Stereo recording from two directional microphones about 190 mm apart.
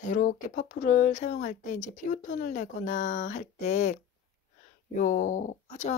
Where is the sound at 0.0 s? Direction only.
45° left (ahead or behind).